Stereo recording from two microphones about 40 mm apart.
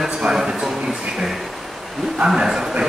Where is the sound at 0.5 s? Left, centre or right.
Centre.